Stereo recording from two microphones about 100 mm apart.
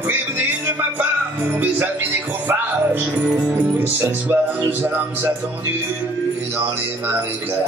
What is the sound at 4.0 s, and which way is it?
Speech, 20° right (ahead or behind).